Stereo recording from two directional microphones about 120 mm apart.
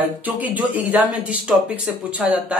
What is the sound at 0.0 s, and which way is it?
Speech, 15° right (ahead or behind).